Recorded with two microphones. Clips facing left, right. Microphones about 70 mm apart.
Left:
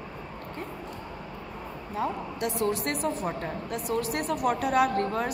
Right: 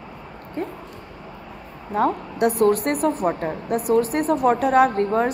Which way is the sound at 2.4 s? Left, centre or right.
Right.